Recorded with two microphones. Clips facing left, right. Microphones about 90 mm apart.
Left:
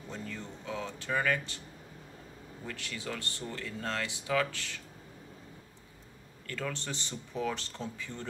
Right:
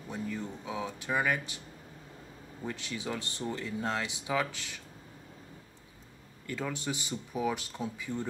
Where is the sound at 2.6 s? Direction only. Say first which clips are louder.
Right 3 dB; 20° right (ahead or behind).